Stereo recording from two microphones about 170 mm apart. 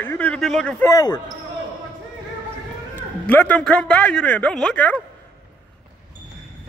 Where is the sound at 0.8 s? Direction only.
20° left (ahead or behind).